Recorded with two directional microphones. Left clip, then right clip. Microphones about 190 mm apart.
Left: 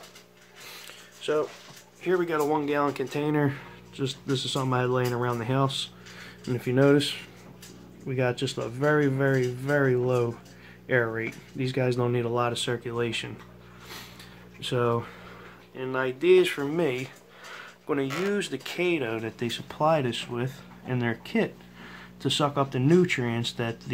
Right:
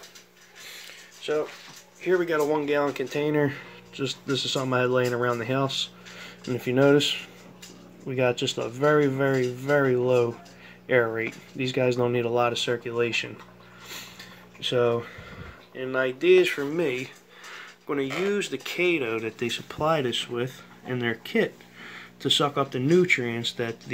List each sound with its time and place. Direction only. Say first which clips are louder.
1.2 s speech: even; 10° left (ahead or behind)
2.0 s speech: right 2 dB; 10° right (ahead or behind)
14.6 s speech: right 3 dB; 5° right (ahead or behind)